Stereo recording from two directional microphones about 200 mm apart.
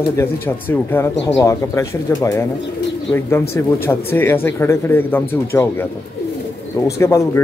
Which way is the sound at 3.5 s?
10° left (ahead or behind).